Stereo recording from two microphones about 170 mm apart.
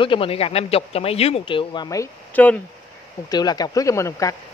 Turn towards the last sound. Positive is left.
turn(degrees=20)  # may be behind; listen again after turning